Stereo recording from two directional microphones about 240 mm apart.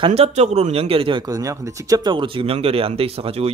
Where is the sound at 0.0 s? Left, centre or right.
Right.